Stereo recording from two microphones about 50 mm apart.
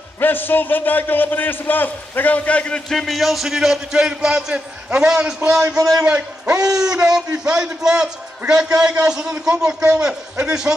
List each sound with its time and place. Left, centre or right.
0.2 s a man's voice: left
2.9 s a man's voice: centre
6.0 s a man's voice: right
6.6 s a man's voice: centre